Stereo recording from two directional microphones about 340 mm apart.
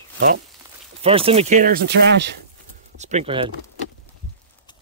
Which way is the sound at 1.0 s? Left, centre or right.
Centre.